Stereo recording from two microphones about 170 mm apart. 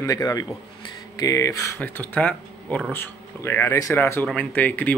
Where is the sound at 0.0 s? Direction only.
20° left (ahead or behind).